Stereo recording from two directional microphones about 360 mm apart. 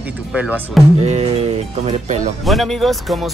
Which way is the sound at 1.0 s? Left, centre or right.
Centre.